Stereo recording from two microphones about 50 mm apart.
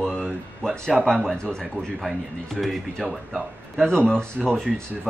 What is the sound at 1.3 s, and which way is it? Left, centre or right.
Speech, centre.